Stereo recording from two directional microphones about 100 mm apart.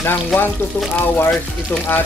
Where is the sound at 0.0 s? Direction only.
20° left (ahead or behind).